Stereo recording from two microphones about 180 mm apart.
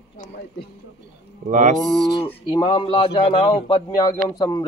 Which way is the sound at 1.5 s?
45° right (ahead or behind).